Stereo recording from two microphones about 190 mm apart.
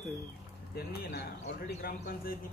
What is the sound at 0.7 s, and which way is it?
Speech, 55° left (ahead or behind).